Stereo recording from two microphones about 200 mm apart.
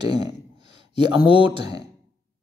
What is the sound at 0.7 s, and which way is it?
Speech, 25° right (ahead or behind).